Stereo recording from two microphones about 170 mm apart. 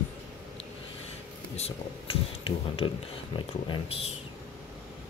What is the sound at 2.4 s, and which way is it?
Speech, 30° left (ahead or behind).